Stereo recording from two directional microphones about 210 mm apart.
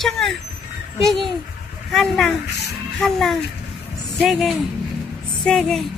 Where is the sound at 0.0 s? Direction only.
Centre (ahead or behind).